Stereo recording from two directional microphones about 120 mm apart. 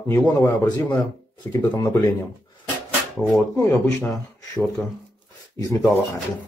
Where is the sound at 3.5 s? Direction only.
30° left (ahead or behind).